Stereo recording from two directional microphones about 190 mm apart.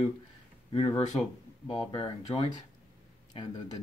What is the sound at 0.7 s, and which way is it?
Speech, 30° left (ahead or behind).